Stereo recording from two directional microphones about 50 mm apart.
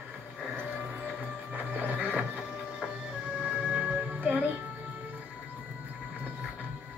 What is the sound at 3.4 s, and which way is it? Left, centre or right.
Music, centre.